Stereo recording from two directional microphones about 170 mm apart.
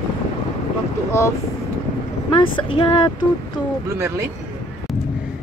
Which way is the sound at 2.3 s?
30° left (ahead or behind).